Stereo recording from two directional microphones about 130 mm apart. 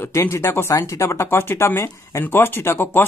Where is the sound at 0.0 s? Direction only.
20° left (ahead or behind).